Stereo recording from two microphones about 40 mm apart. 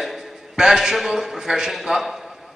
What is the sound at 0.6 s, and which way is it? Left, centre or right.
A man's voice, centre.